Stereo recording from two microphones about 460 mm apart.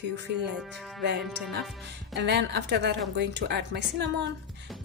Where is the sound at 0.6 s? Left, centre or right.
Centre.